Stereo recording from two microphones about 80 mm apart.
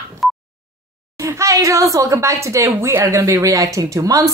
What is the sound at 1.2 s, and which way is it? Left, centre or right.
A woman's voice, right.